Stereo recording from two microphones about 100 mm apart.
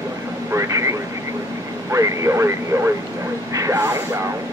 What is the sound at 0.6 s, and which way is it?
Vehicle, 30° right (ahead or behind).